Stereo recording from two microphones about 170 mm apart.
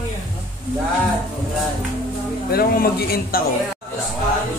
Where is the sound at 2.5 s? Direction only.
60° left (ahead or behind).